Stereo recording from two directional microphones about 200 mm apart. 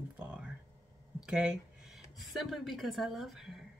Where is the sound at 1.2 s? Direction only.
5° right (ahead or behind).